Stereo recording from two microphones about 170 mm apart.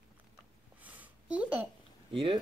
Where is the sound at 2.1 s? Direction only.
30° right (ahead or behind).